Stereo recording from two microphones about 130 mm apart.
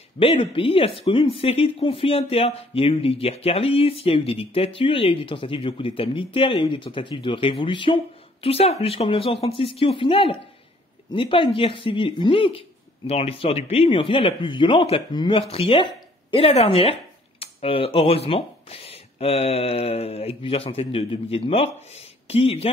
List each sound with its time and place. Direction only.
0.2 s speech: 45° left (ahead or behind)